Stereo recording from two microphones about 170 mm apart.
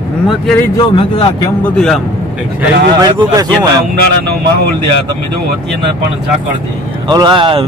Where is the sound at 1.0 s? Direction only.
25° left (ahead or behind).